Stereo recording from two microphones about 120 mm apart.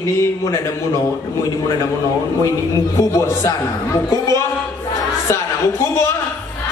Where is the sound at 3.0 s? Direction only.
25° left (ahead or behind).